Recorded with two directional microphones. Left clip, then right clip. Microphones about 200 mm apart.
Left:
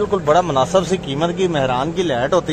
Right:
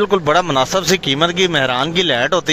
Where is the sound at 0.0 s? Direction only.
20° right (ahead or behind).